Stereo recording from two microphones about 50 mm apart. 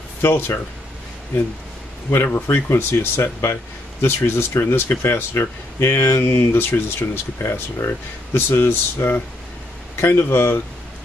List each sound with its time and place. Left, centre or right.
0.2 s speech: left
2.0 s speech: left
2.3 s speech: left